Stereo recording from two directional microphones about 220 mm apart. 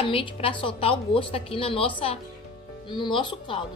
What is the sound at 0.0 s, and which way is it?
A woman's voice, 25° left (ahead or behind).